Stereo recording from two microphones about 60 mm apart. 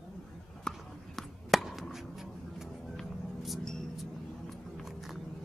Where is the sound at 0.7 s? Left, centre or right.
Centre.